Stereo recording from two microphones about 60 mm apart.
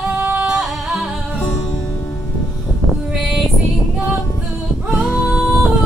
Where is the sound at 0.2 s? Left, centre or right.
Right.